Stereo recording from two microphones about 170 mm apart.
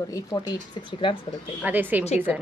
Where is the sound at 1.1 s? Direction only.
30° left (ahead or behind).